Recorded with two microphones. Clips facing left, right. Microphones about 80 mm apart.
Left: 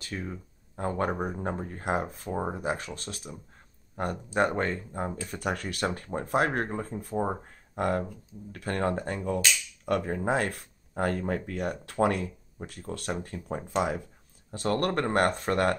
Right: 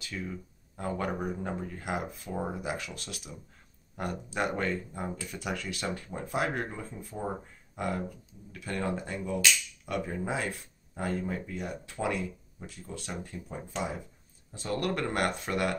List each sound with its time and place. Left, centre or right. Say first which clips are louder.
0.0 s speech: left 2 dB; left
14.9 s speech: left 3 dB; left